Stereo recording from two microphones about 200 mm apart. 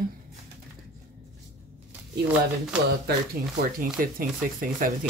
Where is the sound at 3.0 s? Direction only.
50° right (ahead or behind).